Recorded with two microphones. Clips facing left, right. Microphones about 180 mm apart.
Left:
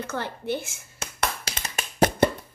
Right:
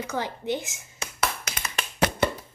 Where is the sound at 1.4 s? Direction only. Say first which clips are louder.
Even; 30° left (ahead or behind).